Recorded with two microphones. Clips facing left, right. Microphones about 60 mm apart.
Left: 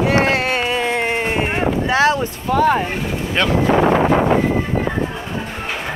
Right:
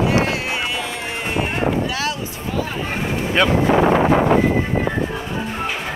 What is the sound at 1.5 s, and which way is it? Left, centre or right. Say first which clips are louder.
Boat: left 3 dB; left.